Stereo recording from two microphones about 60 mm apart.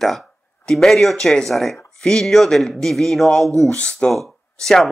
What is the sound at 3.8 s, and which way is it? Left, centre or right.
Speech, centre.